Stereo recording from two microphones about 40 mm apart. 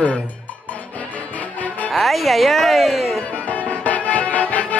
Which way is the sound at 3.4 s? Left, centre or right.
Left.